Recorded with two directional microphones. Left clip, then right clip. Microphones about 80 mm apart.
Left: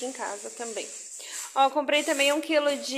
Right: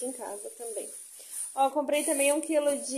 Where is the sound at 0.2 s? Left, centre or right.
Right.